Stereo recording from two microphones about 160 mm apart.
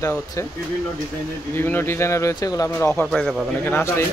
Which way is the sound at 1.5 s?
15° left (ahead or behind).